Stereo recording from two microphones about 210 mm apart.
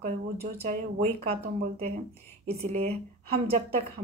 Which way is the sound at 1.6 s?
35° right (ahead or behind).